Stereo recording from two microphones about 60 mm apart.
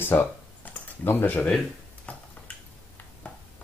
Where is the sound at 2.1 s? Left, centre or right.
Left.